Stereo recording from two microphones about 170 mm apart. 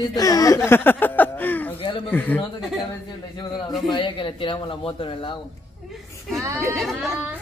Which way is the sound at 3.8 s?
30° left (ahead or behind).